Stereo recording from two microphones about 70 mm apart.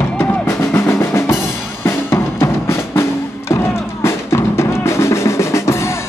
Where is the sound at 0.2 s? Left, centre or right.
Left.